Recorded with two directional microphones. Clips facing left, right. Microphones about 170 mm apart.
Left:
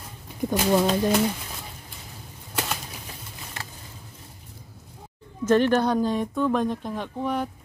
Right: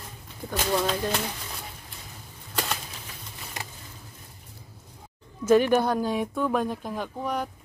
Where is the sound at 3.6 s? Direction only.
15° right (ahead or behind).